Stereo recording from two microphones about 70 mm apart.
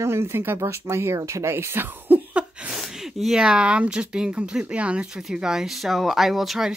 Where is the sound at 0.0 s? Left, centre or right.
Right; by 2.8 s centre.